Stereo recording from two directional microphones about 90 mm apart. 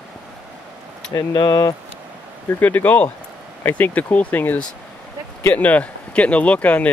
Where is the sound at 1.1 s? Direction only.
50° left (ahead or behind).